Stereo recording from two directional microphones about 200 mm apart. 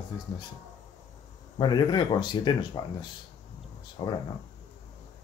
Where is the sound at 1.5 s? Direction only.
20° left (ahead or behind).